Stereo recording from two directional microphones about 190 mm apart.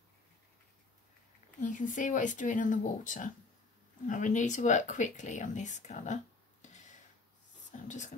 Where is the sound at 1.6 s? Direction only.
45° left (ahead or behind).